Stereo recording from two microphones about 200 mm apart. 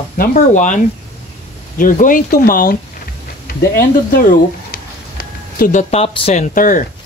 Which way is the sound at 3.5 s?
45° left (ahead or behind).